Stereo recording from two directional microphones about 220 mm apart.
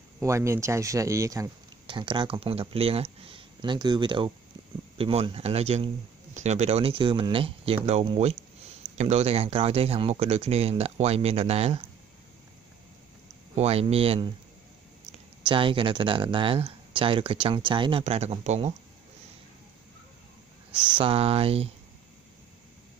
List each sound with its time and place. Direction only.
0.2 s speech: 15° right (ahead or behind)
13.6 s speech: 30° right (ahead or behind)
15.4 s speech: 25° right (ahead or behind)
20.9 s speech: 25° right (ahead or behind)